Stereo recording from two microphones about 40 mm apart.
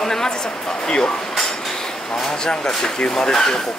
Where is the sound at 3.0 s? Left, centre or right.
Centre.